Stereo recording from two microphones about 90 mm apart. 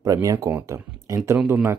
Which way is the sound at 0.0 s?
40° right (ahead or behind).